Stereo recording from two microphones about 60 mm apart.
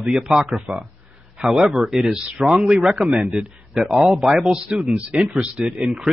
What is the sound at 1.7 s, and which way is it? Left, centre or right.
A man's voice, centre.